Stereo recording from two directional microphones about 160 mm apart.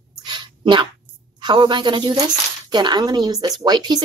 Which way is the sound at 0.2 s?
30° right (ahead or behind).